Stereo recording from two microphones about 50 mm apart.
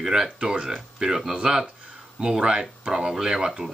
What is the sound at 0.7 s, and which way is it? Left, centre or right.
Speech, centre.